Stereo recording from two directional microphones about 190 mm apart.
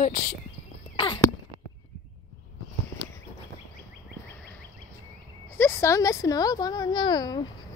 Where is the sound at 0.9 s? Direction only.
25° left (ahead or behind).